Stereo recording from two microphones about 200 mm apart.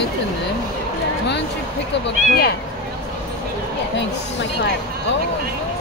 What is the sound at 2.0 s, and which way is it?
Speech, 50° left (ahead or behind).